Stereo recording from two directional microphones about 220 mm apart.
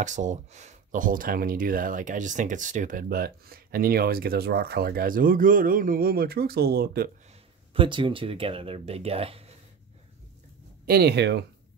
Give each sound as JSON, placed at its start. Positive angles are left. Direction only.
{"t": 0.0, "sound": "speech", "side_deg": -35}
{"t": 7.7, "sound": "speech", "side_deg": -25}
{"t": 10.9, "sound": "speech", "side_deg": -45}